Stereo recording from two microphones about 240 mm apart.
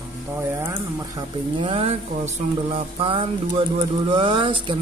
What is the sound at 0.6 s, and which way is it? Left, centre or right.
Speech, centre.